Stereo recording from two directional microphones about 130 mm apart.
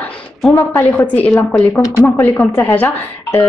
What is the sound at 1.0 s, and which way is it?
Speech, 10° left (ahead or behind).